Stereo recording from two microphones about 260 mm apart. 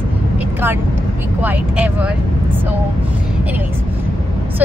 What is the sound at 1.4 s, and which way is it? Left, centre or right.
Speech, centre.